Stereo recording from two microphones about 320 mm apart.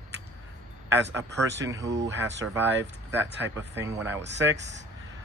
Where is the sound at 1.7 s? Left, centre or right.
Centre.